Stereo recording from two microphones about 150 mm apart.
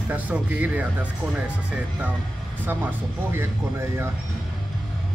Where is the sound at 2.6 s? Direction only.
15° right (ahead or behind).